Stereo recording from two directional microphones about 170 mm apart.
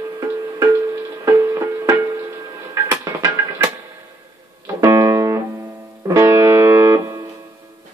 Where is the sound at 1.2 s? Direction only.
20° right (ahead or behind).